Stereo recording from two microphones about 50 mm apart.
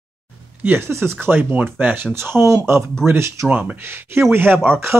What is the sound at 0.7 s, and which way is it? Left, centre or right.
Speech, right.